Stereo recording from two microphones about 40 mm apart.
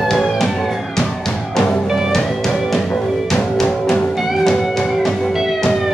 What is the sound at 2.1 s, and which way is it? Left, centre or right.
Music, centre.